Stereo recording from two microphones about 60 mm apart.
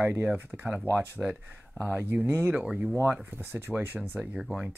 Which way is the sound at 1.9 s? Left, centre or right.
Right.